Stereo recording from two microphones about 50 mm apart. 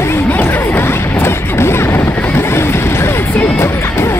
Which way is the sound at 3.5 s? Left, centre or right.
Left.